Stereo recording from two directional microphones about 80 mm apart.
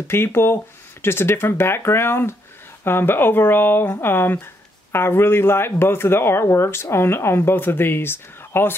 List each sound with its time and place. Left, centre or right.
0.1 s speech: left